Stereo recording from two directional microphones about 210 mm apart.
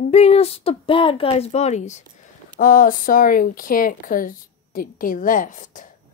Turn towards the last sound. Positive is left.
turn(degrees=40)  # may be behind; listen again after turning